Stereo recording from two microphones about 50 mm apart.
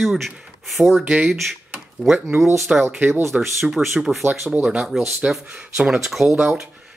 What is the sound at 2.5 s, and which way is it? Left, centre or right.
Speech, centre.